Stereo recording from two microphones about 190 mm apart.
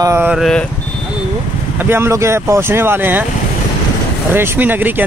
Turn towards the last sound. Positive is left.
turn(degrees=-10)  # may be behind; listen again after turning